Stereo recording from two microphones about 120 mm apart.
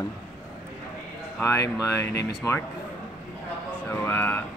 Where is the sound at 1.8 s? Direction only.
25° left (ahead or behind).